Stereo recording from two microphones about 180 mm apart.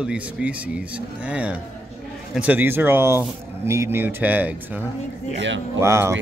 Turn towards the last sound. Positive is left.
turn(degrees=-15)  # may be behind; listen again after turning